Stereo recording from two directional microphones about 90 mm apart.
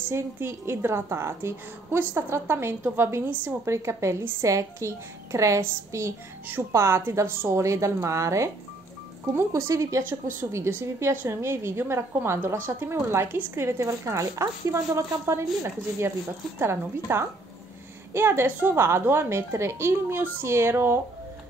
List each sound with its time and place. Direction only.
0.0 s a woman's voice: 25° right (ahead or behind)